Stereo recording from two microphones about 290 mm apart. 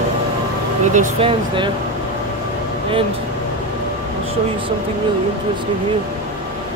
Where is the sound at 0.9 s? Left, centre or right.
Centre.